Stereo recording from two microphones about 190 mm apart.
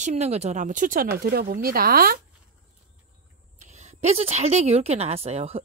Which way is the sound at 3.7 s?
35° right (ahead or behind).